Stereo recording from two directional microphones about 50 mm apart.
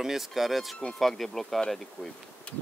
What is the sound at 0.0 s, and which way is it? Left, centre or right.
Speech, centre.